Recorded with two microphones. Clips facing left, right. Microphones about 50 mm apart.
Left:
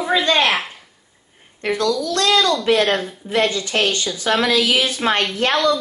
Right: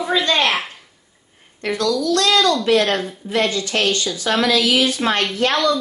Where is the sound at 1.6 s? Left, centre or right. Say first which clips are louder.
Even; left.